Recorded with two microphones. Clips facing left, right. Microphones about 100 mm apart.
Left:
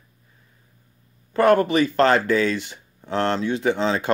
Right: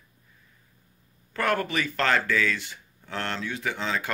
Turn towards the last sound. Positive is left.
turn(degrees=30)  # may be behind; listen again after turning